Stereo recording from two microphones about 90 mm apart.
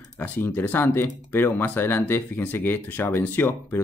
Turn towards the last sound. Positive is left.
turn(degrees=20)  # may be behind; listen again after turning